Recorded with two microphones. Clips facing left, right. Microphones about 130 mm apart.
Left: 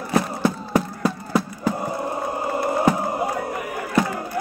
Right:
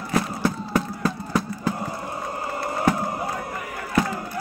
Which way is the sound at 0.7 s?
10° left (ahead or behind).